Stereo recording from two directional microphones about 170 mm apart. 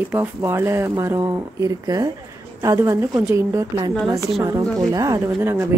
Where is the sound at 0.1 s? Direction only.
15° right (ahead or behind).